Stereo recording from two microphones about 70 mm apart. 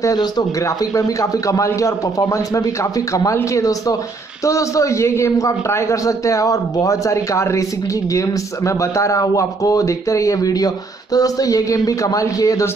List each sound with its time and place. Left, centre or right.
0.7 s a man's voice: left